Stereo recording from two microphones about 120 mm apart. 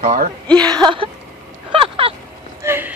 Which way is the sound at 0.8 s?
45° right (ahead or behind).